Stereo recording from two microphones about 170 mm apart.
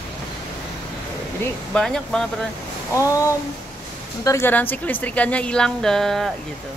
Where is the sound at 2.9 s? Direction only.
15° left (ahead or behind); by 6.3 s centre (ahead or behind).